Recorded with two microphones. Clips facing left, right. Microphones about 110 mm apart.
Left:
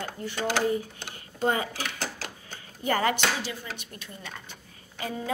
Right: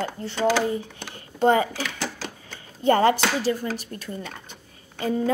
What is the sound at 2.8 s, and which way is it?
A woman's voice, 30° right (ahead or behind).